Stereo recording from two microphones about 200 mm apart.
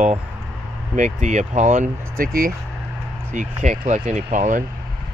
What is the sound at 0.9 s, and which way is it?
Speech, 35° right (ahead or behind).